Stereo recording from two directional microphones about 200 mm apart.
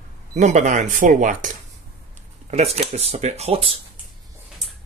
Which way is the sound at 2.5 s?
30° right (ahead or behind).